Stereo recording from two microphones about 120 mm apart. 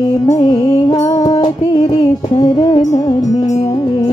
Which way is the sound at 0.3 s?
35° left (ahead or behind).